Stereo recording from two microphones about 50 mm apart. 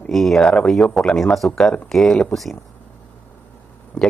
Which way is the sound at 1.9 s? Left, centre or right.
Centre.